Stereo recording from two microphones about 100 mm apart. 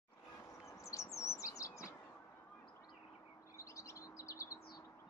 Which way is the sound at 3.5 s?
30° left (ahead or behind).